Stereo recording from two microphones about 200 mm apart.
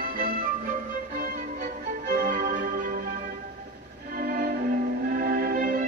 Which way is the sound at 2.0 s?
40° right (ahead or behind).